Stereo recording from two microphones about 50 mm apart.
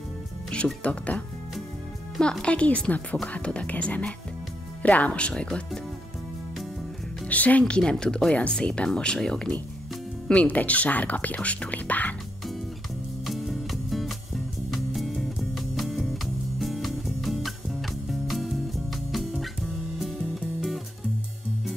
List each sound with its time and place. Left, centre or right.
0.5 s music: left
0.8 s speech: left
2.4 s speech: left
7.2 s speech: left
7.6 s speech: centre
10.4 s speech: left
13.2 s music: centre